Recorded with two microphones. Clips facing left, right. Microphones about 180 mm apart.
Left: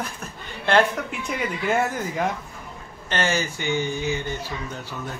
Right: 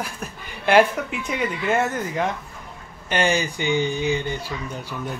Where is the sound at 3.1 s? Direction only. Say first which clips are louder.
Right 3 dB; 15° right (ahead or behind).